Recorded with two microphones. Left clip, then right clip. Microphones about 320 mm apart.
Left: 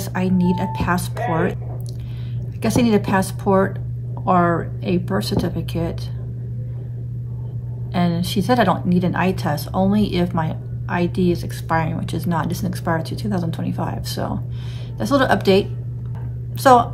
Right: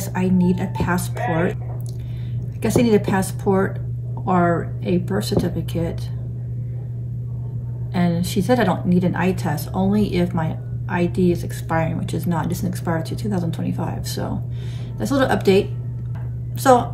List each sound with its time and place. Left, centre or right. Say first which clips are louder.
0.0 s music: even; centre
0.6 s a woman's voice: left 2 dB; centre
2.6 s a woman's voice: right 1 dB; centre
7.9 s a woman's voice: left 1 dB; centre
16.6 s a woman's voice: left 2 dB; centre